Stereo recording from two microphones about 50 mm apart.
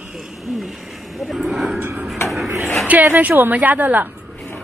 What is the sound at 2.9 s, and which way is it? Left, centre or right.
A woman's voice, right.